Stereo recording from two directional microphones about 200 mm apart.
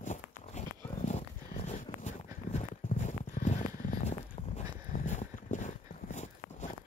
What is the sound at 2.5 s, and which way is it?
Clip-clop, 35° left (ahead or behind).